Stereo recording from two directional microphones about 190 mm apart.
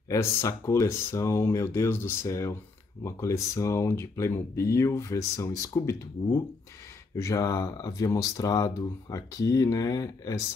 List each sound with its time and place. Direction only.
0.1 s speech: 15° left (ahead or behind)